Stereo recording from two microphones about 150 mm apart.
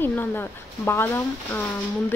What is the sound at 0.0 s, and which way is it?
Speech, 15° left (ahead or behind).